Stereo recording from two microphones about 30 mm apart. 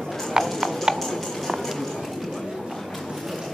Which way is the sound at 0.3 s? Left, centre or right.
Centre.